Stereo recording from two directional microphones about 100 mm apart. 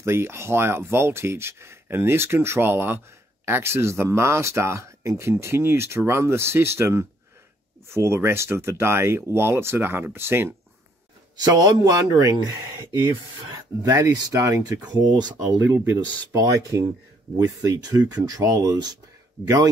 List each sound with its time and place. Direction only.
0.0 s speech: 25° right (ahead or behind)
11.3 s speech: 35° right (ahead or behind)
12.9 s speech: 20° right (ahead or behind)
13.5 s speech: 35° right (ahead or behind)
15.6 s speech: 30° right (ahead or behind)